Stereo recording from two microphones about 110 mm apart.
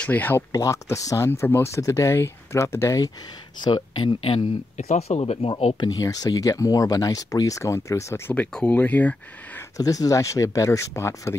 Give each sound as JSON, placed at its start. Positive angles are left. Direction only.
{"t": 0.0, "sound": "speech", "side_deg": 15}
{"t": 0.5, "sound": "speech", "side_deg": 30}
{"t": 3.6, "sound": "speech", "side_deg": 40}
{"t": 4.7, "sound": "speech", "side_deg": 85}
{"t": 5.9, "sound": "speech", "side_deg": 35}
{"t": 8.4, "sound": "speech", "side_deg": 15}
{"t": 9.8, "sound": "speech", "side_deg": 30}